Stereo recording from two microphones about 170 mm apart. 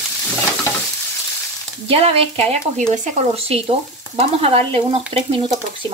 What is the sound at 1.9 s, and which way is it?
Speech, 35° right (ahead or behind).